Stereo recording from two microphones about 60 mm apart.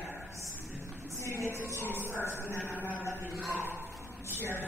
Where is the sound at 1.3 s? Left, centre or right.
Right.